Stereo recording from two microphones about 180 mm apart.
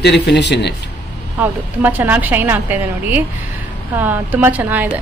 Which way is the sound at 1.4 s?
10° right (ahead or behind).